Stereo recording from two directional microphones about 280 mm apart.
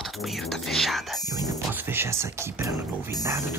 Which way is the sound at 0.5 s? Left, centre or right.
Centre.